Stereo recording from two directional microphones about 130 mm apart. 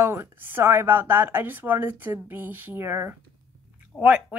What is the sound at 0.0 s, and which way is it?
Speech, 15° right (ahead or behind).